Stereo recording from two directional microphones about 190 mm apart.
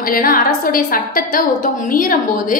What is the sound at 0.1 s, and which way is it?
A woman's voice, 50° left (ahead or behind).